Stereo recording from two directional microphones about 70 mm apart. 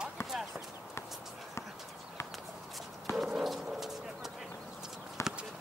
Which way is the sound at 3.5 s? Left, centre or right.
Centre.